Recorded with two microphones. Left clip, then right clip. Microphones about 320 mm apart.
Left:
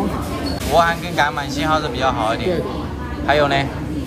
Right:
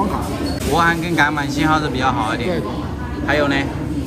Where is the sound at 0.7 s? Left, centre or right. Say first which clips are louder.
Left 1 dB; centre.